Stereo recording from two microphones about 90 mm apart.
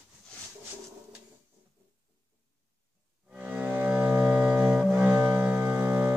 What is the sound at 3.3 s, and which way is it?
Music, 15° right (ahead or behind).